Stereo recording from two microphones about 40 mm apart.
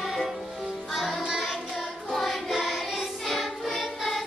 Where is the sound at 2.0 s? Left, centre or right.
Centre.